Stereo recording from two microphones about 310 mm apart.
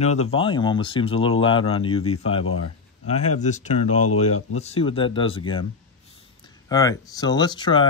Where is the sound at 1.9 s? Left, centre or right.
Left.